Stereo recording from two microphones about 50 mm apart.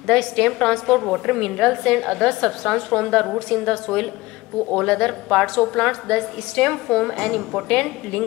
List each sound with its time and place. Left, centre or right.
0.0 s a woman's voice: centre